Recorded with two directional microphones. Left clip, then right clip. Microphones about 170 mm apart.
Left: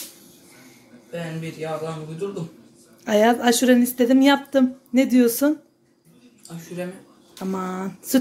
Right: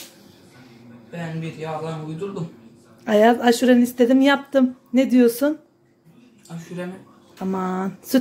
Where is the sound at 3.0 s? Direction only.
Centre (ahead or behind).